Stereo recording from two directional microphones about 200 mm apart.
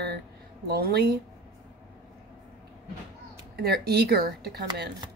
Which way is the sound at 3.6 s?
50° right (ahead or behind).